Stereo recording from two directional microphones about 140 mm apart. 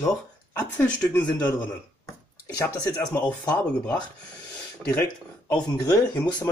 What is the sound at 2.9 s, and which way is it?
Speech, 10° left (ahead or behind).